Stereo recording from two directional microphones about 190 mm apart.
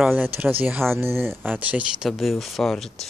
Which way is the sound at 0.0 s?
10° right (ahead or behind).